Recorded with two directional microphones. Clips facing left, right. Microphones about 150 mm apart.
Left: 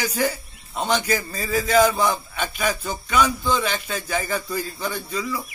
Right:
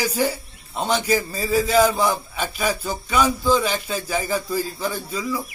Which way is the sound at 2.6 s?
35° right (ahead or behind).